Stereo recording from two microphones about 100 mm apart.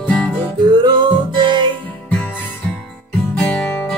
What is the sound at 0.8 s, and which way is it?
Music, 50° right (ahead or behind).